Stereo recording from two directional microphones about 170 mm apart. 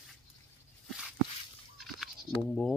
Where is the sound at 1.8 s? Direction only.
5° left (ahead or behind).